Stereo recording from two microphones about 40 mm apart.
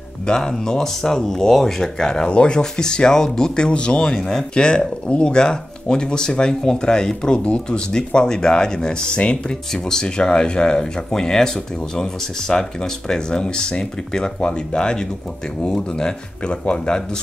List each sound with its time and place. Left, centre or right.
0.3 s speech: centre